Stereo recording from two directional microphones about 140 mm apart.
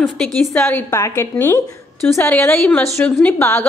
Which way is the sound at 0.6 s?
15° left (ahead or behind).